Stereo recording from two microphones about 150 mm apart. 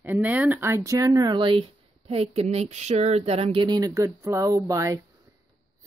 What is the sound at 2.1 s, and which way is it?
Speech, 45° right (ahead or behind).